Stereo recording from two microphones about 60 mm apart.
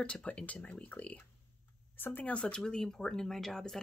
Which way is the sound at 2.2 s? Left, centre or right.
Centre.